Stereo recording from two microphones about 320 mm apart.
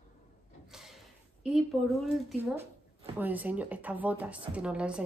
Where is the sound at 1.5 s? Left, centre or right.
Centre.